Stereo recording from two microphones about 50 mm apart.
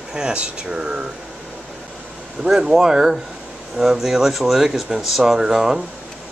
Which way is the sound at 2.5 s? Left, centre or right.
Centre.